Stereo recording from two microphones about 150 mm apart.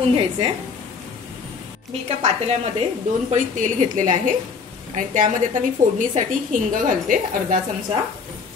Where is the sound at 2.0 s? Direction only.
45° right (ahead or behind).